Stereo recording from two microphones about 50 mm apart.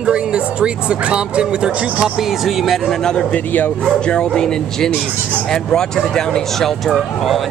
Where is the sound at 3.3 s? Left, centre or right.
Left.